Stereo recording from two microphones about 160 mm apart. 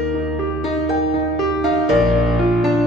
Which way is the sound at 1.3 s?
Centre (ahead or behind).